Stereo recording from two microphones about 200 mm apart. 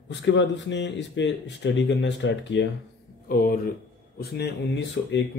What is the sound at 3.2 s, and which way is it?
Speech, 50° left (ahead or behind).